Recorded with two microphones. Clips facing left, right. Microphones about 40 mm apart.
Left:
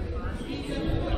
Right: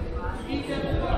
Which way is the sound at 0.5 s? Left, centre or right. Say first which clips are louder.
Right 3 dB; right.